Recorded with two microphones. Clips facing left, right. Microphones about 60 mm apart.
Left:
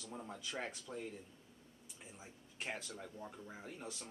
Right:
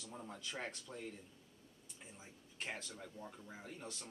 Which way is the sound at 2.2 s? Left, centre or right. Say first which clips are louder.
Left 1 dB; centre.